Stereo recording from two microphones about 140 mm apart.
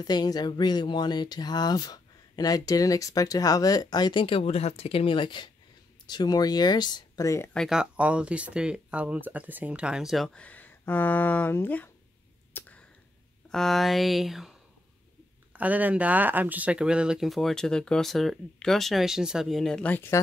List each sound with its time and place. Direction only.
0.0 s speech: 30° left (ahead or behind)
7.5 s speech: centre (ahead or behind); by 11.9 s 15° left (ahead or behind)
12.5 s a sound: 10° left (ahead or behind)
13.5 s speech: centre (ahead or behind)
15.5 s speech: 10° right (ahead or behind); by 20.2 s 15° left (ahead or behind)